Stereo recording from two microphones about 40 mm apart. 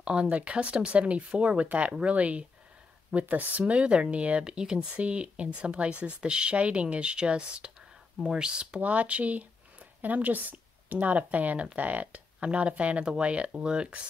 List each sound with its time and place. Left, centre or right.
0.0 s speech: right
2.1 s speech: right
4.5 s speech: centre
8.8 s speech: right